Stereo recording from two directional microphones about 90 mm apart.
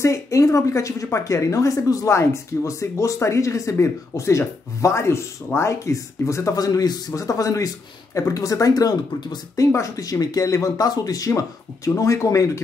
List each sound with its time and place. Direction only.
0.0 s a woman's voice: 35° left (ahead or behind)
9.7 s a woman's voice: 35° left (ahead or behind)